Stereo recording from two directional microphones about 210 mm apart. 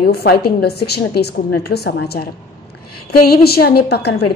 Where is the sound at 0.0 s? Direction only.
45° left (ahead or behind).